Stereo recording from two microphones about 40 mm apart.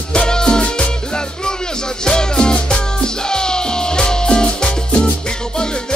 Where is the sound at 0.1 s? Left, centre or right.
Left.